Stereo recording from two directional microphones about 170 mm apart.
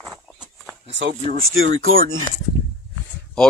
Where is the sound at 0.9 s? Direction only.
90° right.